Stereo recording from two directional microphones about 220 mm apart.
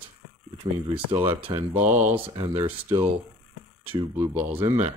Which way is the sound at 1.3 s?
10° right (ahead or behind).